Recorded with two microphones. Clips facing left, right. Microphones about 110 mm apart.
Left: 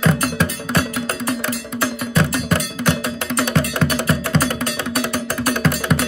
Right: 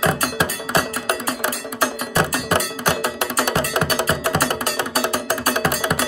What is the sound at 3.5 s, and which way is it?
Music, 20° right (ahead or behind).